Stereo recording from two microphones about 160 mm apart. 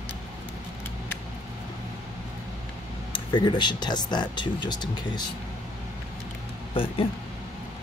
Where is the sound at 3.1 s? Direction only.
30° left (ahead or behind).